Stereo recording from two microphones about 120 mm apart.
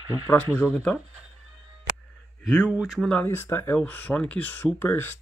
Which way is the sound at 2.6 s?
5° right (ahead or behind).